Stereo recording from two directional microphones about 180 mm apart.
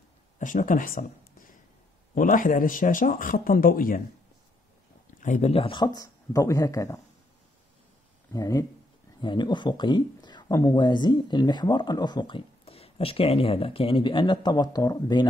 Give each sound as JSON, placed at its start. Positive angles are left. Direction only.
{"t": 0.4, "sound": "a sound", "side_deg": 45}
{"t": 2.1, "sound": "speech", "side_deg": 45}
{"t": 5.2, "sound": "speech", "side_deg": 40}
{"t": 8.3, "sound": "speech", "side_deg": 20}